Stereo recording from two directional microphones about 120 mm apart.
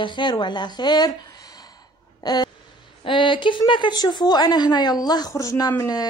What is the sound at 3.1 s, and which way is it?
A woman's voice, 45° left (ahead or behind).